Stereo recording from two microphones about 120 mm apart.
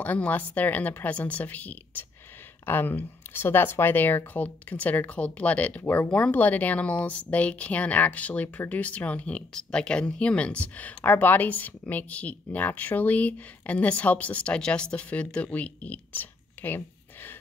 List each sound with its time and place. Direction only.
0.0 s speech: 15° left (ahead or behind)